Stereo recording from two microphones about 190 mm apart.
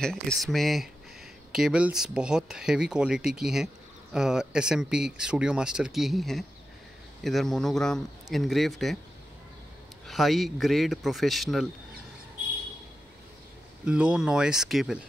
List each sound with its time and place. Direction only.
0.0 s speech: 5° left (ahead or behind)
10.0 s speech: centre (ahead or behind)
13.8 s speech: 5° right (ahead or behind)